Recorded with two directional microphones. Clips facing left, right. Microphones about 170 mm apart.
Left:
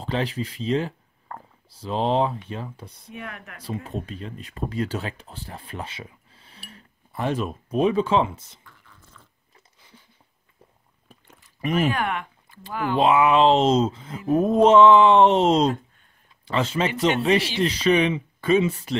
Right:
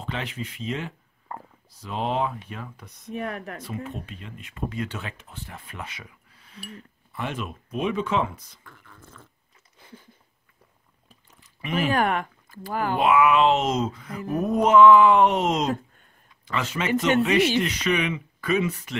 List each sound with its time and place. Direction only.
0.0 s speech: 35° left (ahead or behind)
1.3 s stomach rumble: 10° right (ahead or behind)
1.7 s speech: 30° left (ahead or behind)
3.1 s speech: 35° right (ahead or behind)
3.6 s speech: 35° left (ahead or behind)
8.6 s a sound: 50° right (ahead or behind)
11.6 s speech: 40° left (ahead or behind)
11.9 s speech: 40° right (ahead or behind)
12.9 s speech: 30° left (ahead or behind)